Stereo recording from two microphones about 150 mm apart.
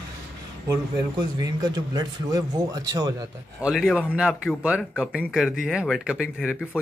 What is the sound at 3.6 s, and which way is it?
Speech, 5° right (ahead or behind).